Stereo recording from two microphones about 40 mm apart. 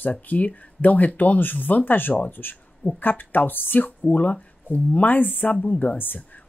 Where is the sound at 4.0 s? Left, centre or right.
Left.